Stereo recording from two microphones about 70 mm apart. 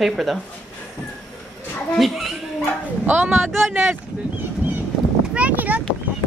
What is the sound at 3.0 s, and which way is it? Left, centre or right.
Speech, right.